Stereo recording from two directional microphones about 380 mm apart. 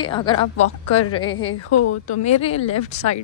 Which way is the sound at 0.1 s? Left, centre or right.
Centre.